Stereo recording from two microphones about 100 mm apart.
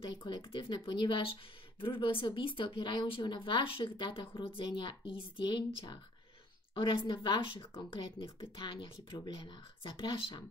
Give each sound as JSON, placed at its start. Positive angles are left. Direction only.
{"t": 0.1, "sound": "a woman's voice", "side_deg": 50}